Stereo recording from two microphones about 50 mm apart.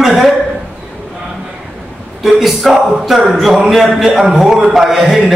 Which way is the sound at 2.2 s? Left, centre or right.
Centre.